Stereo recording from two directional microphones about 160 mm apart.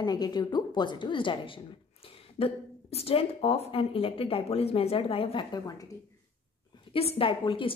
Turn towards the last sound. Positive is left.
turn(degrees=30)  # may be behind; listen again after turning